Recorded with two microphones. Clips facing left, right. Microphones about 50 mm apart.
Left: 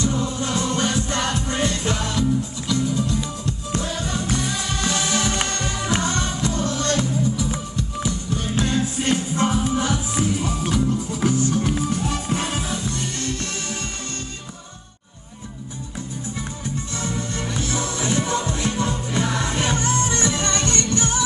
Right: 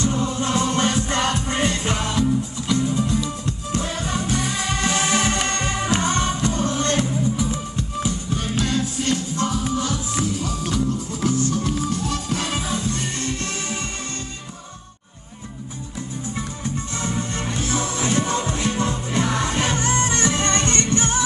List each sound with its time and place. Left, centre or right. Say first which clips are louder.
0.0 s music: right 1 dB; right
7.1 s music: even; centre
7.7 s music: right 1 dB; right
8.5 s music: left 2 dB; left
12.5 s music: right 1 dB; right
17.0 s music: right 1 dB; right